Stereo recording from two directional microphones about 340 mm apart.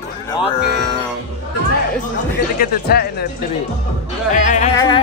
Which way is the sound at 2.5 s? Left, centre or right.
Left.